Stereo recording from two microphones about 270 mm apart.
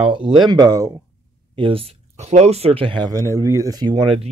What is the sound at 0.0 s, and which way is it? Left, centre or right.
Speech, centre.